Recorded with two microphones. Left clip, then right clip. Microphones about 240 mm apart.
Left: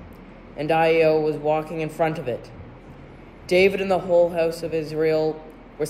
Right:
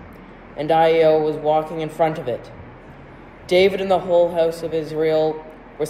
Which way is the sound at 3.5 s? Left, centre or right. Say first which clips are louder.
Right 3 dB; centre.